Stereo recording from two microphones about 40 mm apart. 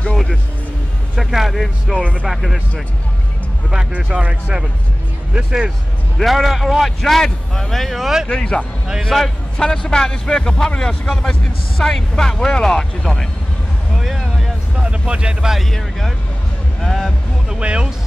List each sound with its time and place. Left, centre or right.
0.1 s music: centre
1.2 s a man's voice: centre
3.9 s speech: right
5.3 s speech: centre
6.1 s a man's voice: centre
8.0 s speech: centre
8.3 s speech: centre
9.1 s a man's voice: centre
9.6 s speech: centre
13.9 s vehicle: centre
14.8 s vehicle: right
15.6 s a man's voice: centre
16.8 s music: centre
17.6 s speech: right